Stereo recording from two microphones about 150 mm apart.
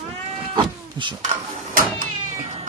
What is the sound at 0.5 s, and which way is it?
Cat, 30° right (ahead or behind).